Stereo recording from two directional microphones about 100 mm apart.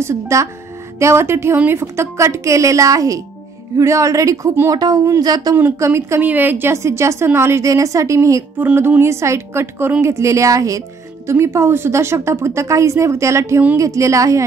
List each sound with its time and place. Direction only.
0.0 s speech: 30° right (ahead or behind)
5.6 s speech: 25° right (ahead or behind)
8.5 s speech: 20° right (ahead or behind)